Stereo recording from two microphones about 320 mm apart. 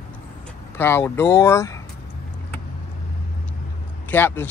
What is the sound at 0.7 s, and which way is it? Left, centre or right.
Speech, centre.